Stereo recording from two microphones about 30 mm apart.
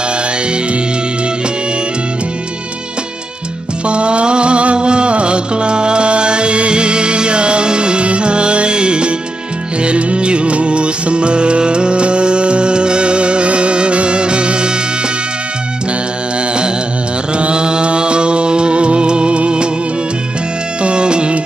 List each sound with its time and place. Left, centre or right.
3.8 s music: right
17.4 s music: right
20.8 s music: right